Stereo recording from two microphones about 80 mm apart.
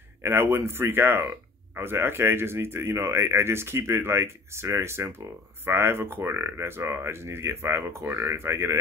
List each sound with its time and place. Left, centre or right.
0.2 s speech: right